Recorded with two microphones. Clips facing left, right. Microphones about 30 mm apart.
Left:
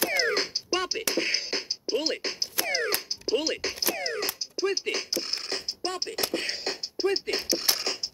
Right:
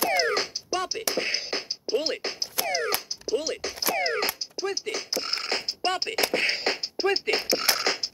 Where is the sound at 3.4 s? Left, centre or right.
Centre.